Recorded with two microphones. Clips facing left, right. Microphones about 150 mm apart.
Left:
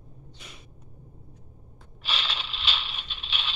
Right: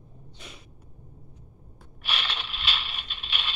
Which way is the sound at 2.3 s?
Centre (ahead or behind).